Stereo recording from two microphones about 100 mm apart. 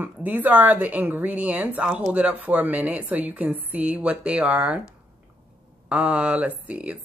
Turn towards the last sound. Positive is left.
turn(degrees=-15)  # may be behind; listen again after turning